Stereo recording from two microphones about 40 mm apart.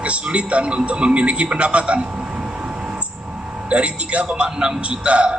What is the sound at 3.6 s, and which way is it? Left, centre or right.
A man's voice, right.